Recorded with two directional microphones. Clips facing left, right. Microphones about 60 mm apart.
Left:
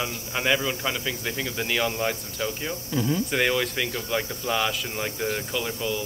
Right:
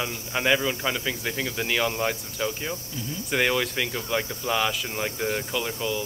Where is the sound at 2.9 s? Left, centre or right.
Left.